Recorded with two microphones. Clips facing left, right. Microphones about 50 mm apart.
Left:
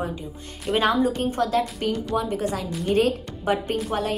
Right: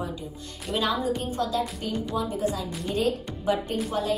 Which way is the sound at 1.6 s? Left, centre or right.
Left.